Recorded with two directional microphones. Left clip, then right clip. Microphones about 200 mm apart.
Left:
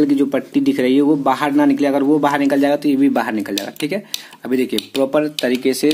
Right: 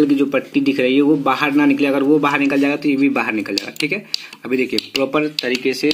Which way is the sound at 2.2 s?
35° left (ahead or behind).